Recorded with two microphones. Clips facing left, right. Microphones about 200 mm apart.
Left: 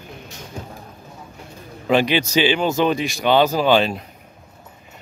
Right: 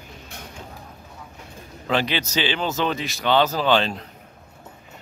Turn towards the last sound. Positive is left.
turn(degrees=10)  # may be behind; listen again after turning